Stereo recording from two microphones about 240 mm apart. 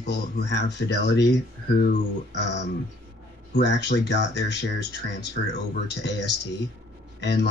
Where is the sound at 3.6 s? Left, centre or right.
Left.